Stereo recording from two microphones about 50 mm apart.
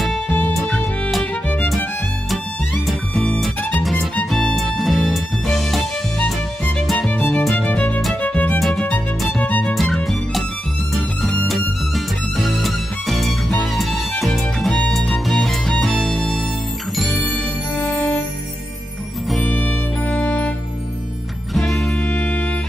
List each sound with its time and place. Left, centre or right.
0.6 s music: centre
4.6 s music: centre
7.1 s music: left
7.5 s music: left
8.5 s music: centre
9.4 s music: left
11.4 s music: centre
17.7 s music: left
19.4 s music: left
21.5 s music: centre
22.0 s music: left